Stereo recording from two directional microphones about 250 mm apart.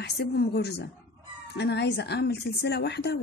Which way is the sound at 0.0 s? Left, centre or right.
Left.